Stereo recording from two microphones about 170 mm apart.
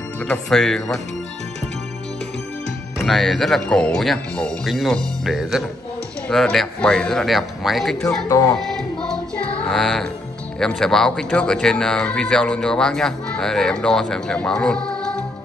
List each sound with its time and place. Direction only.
0.2 s speech: 5° left (ahead or behind)
3.1 s speech: centre (ahead or behind)
8.3 s speech: 20° left (ahead or behind)
8.5 s music: centre (ahead or behind)
10.6 s speech: 5° left (ahead or behind)